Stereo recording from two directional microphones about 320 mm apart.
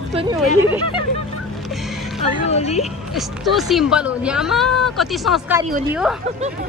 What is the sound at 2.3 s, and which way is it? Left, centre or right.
Speech, centre.